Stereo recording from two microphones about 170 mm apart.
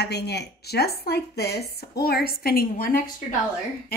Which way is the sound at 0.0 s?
75° left (ahead or behind).